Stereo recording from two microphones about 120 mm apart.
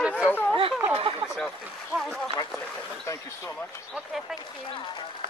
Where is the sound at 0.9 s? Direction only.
50° right (ahead or behind).